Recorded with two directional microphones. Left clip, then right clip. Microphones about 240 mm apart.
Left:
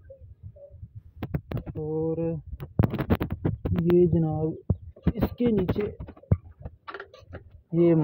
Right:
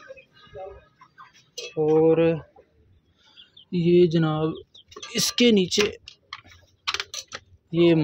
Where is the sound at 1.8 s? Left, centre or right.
Centre.